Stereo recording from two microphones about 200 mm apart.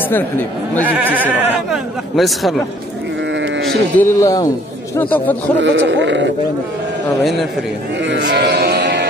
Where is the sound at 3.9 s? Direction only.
15° left (ahead or behind).